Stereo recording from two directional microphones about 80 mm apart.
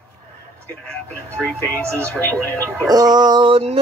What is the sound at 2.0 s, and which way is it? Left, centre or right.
Speech, centre.